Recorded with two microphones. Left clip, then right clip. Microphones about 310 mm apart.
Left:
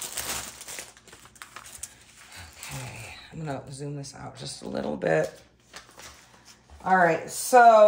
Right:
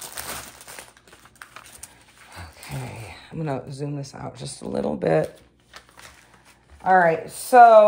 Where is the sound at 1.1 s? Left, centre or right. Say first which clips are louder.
Right 1 dB; centre.